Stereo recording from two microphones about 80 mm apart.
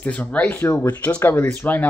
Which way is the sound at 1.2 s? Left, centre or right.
Left.